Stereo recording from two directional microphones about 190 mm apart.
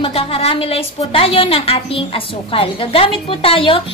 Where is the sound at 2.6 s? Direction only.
30° left (ahead or behind).